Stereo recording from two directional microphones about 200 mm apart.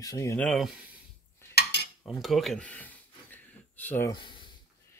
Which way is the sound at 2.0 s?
Centre (ahead or behind).